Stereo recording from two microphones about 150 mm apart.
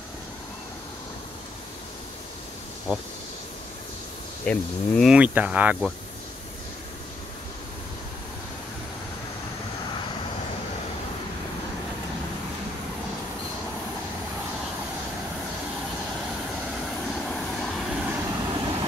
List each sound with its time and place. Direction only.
4.5 s speech: 5° left (ahead or behind)
5.1 s speech: 10° right (ahead or behind)
16.8 s vehicle: 5° left (ahead or behind)
18.5 s vehicle: 30° right (ahead or behind)